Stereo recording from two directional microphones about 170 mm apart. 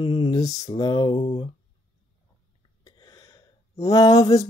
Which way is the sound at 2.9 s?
25° left (ahead or behind).